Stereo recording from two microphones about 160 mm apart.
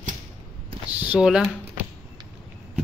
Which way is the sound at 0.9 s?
10° right (ahead or behind).